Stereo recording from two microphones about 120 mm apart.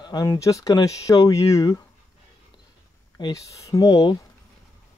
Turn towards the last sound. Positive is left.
turn(degrees=35)  # may be behind; listen again after turning